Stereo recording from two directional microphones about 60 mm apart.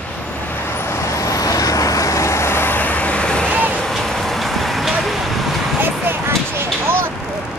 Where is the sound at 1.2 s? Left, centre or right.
Left; by 3.5 s centre.